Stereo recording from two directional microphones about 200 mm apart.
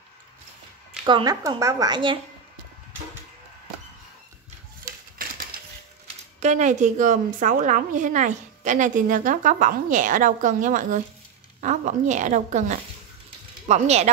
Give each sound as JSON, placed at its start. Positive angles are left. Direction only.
{"t": 1.0, "sound": "speech", "side_deg": -20}
{"t": 5.2, "sound": "a sound", "side_deg": -45}
{"t": 6.4, "sound": "a woman's voice", "side_deg": -35}